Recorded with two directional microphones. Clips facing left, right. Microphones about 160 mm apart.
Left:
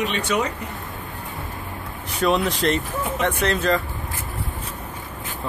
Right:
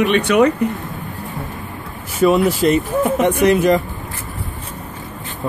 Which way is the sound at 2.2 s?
5° right (ahead or behind).